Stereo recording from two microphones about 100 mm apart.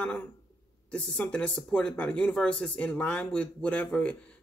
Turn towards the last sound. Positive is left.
turn(degrees=10)  # may be behind; listen again after turning